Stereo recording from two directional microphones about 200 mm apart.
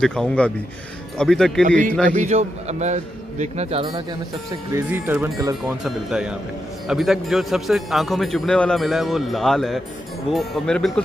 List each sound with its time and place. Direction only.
0.0 s a man's voice: 5° left (ahead or behind)
2.1 s a man's voice: 35° right (ahead or behind)
4.5 s speech: 10° right (ahead or behind)
5.9 s a man's voice: 5° right (ahead or behind)